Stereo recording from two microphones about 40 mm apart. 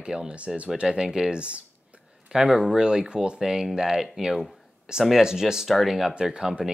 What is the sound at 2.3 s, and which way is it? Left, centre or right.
Speech, centre.